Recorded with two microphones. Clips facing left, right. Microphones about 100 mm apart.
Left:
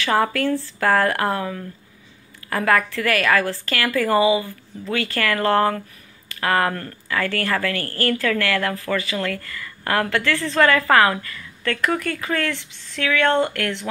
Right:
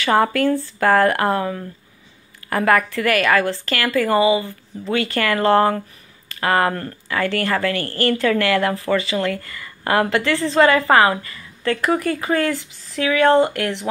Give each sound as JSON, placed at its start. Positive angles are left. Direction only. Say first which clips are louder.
{"t": 0.0, "sound": "speech", "louder": "right 3 dB", "side_deg": -5}
{"t": 2.5, "sound": "speech", "louder": "right 2 dB", "side_deg": -5}
{"t": 10.2, "sound": "speech", "louder": "right 3 dB", "side_deg": -25}
{"t": 10.8, "sound": "speech", "louder": "right 2 dB", "side_deg": -15}
{"t": 13.4, "sound": "speech", "louder": "right 4 dB", "side_deg": -20}